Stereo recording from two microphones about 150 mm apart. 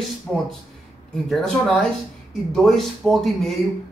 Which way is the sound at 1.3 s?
5° left (ahead or behind).